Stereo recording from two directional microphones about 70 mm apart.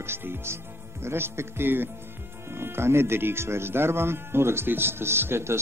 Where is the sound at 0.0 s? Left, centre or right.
Right.